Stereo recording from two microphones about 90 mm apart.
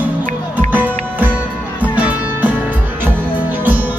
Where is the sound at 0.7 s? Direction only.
20° right (ahead or behind).